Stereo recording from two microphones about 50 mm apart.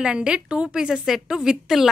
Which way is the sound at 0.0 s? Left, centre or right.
Centre.